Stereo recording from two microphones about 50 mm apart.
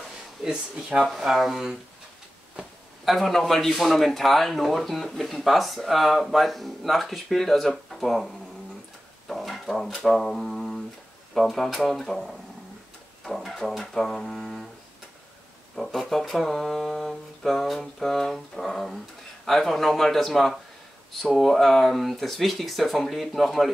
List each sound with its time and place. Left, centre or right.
0.4 s speech: centre
1.0 s speech: centre
3.1 s speech: centre
9.3 s a sound: centre
11.3 s speech: centre
15.7 s speech: centre